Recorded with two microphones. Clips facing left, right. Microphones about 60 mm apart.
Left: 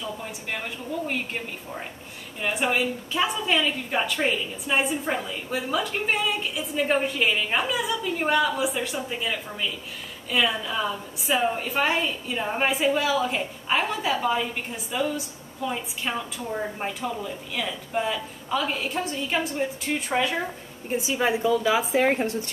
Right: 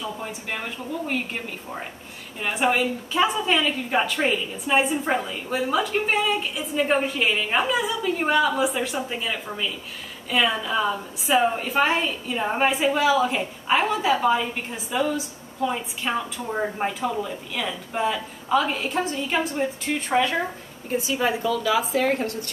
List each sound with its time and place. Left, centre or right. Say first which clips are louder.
1.0 s a woman's voice: right 4 dB; centre
2.4 s a woman's voice: right 2 dB; centre
16.8 s a woman's voice: right 4 dB; centre
21.0 s a woman's voice: left 1 dB; centre